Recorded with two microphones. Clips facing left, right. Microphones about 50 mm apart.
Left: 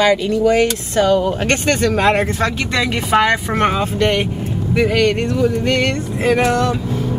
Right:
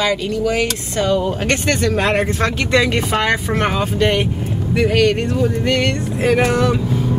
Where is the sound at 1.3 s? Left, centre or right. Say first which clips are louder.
Left 1 dB; left.